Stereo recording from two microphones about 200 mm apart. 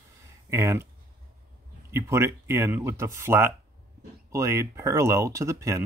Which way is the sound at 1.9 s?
15° right (ahead or behind).